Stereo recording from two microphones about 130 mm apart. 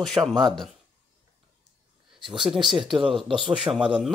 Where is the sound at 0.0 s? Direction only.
Centre (ahead or behind).